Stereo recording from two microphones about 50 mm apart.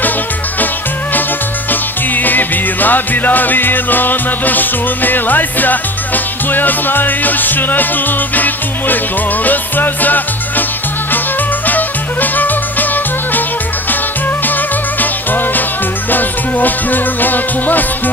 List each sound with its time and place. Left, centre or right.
1.7 s music: left
11.6 s music: left
14.4 s music: left